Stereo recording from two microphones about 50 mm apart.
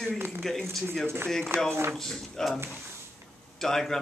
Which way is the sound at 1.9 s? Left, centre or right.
Centre.